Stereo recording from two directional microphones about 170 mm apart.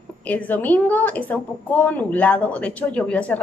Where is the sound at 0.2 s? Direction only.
10° left (ahead or behind).